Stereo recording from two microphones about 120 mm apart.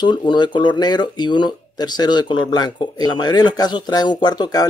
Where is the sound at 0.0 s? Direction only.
40° left (ahead or behind).